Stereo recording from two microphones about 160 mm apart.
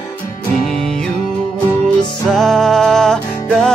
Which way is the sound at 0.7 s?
5° left (ahead or behind).